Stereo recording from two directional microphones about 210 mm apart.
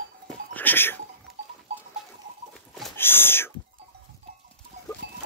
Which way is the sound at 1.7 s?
30° right (ahead or behind).